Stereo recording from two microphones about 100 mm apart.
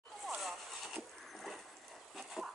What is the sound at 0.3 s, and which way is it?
Vehicle, centre (ahead or behind).